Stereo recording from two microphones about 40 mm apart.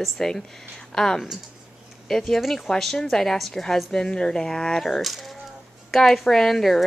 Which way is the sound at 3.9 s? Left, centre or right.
Centre.